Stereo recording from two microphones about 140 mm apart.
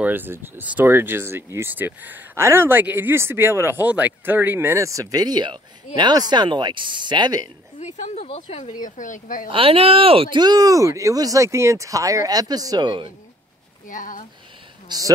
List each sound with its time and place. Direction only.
0.0 s speech: 15° right (ahead or behind); by 7.4 s 30° right (ahead or behind)
7.8 s speech: 55° left (ahead or behind)
8.7 s speech: 65° left (ahead or behind)
9.5 s speech: 40° right (ahead or behind)
10.4 s speech: 25° right (ahead or behind)
13.8 s speech: 70° left (ahead or behind)
14.9 s speech: 25° right (ahead or behind)